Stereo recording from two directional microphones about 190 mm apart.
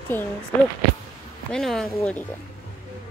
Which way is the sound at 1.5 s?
Centre (ahead or behind).